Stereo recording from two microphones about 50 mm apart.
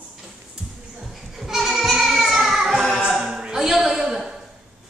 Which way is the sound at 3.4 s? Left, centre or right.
Centre.